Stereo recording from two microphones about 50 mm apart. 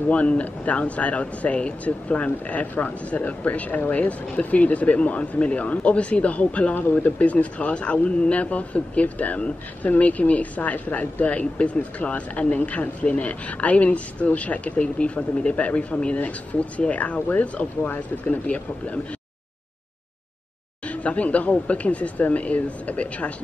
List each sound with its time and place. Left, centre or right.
0.1 s speech: left
20.8 s speech: left